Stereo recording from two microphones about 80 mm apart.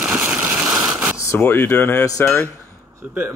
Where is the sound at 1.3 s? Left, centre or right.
Left.